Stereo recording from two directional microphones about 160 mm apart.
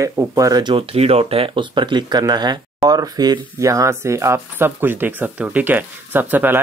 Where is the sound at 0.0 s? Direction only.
20° right (ahead or behind).